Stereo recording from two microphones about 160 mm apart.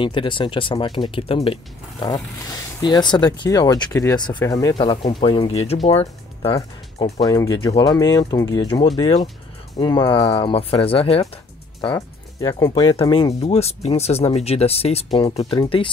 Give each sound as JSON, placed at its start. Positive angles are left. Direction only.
{"t": 0.0, "sound": "speech", "side_deg": 30}
{"t": 4.7, "sound": "speech", "side_deg": 35}
{"t": 6.5, "sound": "speech", "side_deg": 25}
{"t": 9.0, "sound": "speech", "side_deg": 35}